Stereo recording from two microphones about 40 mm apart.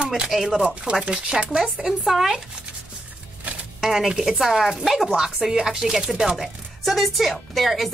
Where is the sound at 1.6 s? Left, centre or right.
Centre.